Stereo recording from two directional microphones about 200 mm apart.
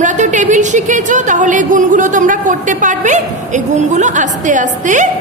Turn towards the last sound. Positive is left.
turn(degrees=-40)  # may be behind; listen again after turning